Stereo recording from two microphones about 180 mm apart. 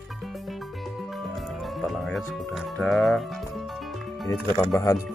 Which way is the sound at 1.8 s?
Centre (ahead or behind).